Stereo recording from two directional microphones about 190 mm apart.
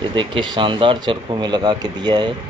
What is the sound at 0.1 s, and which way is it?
Speech, 25° right (ahead or behind).